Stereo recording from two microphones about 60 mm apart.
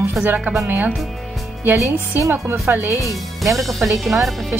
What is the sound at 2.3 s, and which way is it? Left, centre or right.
Speech, right.